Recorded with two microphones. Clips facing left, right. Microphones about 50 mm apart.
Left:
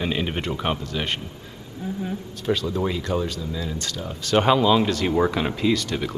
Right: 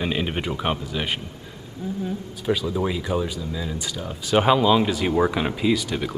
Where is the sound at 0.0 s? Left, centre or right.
Centre.